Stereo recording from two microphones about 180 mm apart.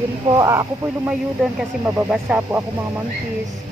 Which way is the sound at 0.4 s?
15° right (ahead or behind).